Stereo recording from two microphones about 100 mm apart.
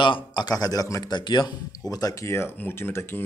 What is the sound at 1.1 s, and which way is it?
Speech, 50° left (ahead or behind).